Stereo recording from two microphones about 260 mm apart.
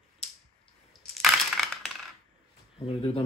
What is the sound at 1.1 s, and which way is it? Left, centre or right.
Crushing, centre.